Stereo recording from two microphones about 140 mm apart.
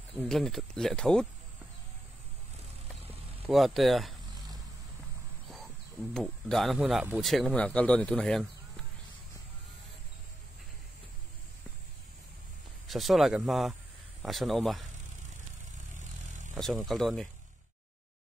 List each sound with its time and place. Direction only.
0.3 s speech: centre (ahead or behind)
3.4 s speech: centre (ahead or behind)
6.1 s speech: centre (ahead or behind)
12.8 s speech: centre (ahead or behind)
16.3 s vehicle: 60° right (ahead or behind)
16.5 s speech: centre (ahead or behind)